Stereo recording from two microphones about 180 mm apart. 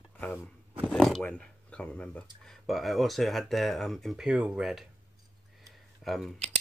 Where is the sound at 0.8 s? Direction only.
5° left (ahead or behind).